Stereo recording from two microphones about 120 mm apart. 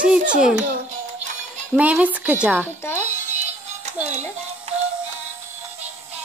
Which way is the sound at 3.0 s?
85° right.